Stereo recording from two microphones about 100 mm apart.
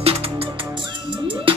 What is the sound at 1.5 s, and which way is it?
Music, 60° right (ahead or behind).